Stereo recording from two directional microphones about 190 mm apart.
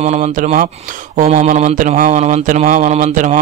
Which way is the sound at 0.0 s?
40° right (ahead or behind).